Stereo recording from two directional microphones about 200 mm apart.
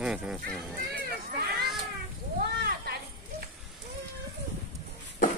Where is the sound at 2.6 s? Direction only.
50° right (ahead or behind).